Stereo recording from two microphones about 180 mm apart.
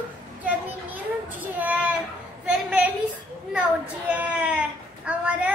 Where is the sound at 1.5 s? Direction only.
10° right (ahead or behind).